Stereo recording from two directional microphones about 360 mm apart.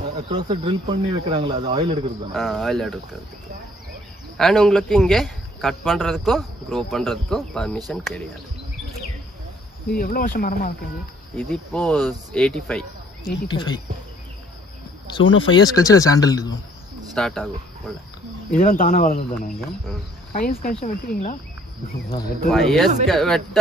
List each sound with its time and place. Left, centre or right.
0.3 s speech: centre
2.3 s speech: centre
4.4 s speech: centre
9.9 s speech: left
11.3 s speech: centre
15.5 s speech: centre
18.5 s speech: left
22.5 s speech: centre